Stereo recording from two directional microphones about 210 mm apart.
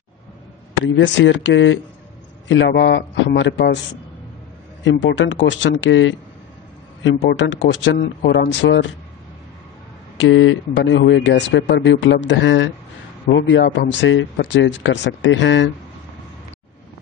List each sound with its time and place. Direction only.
0.8 s speech: 60° left (ahead or behind)
4.8 s speech: 60° left (ahead or behind)
10.1 s speech: 65° left (ahead or behind)